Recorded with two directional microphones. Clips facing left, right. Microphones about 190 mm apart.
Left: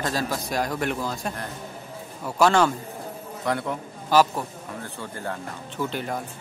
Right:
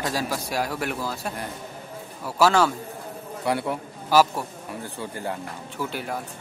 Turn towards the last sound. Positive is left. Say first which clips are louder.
# left 2 dB
turn(degrees=-5)  # may be behind; listen again after turning